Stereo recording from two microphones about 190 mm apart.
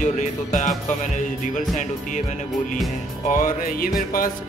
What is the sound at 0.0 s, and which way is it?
Speech, 40° left (ahead or behind).